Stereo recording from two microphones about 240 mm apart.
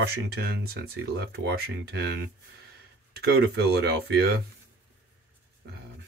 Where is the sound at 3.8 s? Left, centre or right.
Right.